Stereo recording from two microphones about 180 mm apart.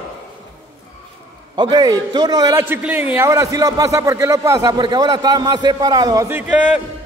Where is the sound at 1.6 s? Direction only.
25° right (ahead or behind); by 6.8 s 5° right (ahead or behind).